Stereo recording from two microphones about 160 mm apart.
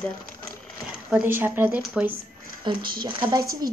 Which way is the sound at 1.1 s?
10° right (ahead or behind).